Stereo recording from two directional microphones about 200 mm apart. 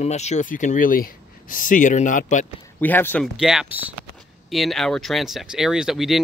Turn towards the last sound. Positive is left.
turn(degrees=0)  # may be behind; listen again after turning